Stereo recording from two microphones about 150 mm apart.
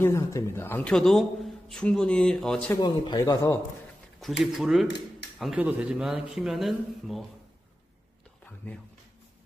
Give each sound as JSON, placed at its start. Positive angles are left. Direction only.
{"t": 0.0, "sound": "a man's voice", "side_deg": 20}
{"t": 2.8, "sound": "a man's voice", "side_deg": 25}
{"t": 4.2, "sound": "speech", "side_deg": 0}